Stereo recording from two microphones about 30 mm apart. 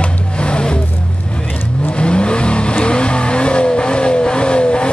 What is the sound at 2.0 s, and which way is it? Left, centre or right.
Vehicle, left.